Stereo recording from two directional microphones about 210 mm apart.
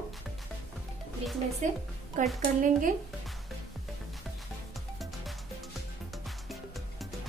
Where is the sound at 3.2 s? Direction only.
Centre (ahead or behind).